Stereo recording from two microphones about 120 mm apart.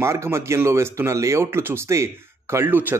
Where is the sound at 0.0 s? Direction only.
25° right (ahead or behind).